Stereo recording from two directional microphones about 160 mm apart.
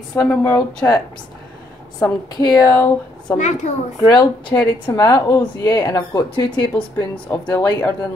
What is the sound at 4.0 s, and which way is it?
A woman's voice, 25° left (ahead or behind).